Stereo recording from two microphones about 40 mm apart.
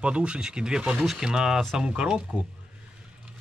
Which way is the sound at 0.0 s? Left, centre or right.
Right.